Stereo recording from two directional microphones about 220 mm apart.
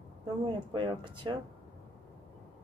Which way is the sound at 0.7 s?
20° right (ahead or behind).